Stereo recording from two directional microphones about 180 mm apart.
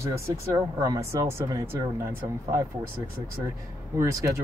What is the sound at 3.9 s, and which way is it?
Speech, 15° right (ahead or behind).